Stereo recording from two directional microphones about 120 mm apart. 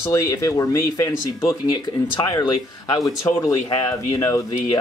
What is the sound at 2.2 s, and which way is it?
Speech, 35° left (ahead or behind).